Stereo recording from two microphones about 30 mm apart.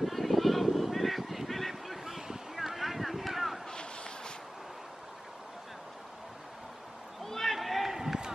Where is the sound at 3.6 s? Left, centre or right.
Left.